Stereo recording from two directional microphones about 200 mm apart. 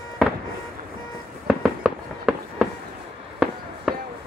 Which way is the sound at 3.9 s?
Centre (ahead or behind).